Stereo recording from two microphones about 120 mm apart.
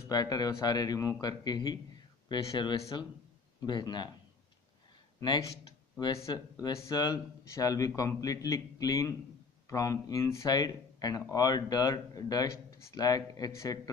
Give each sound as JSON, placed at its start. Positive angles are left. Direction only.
{"t": 0.1, "sound": "speech", "side_deg": 35}
{"t": 5.2, "sound": "speech", "side_deg": 35}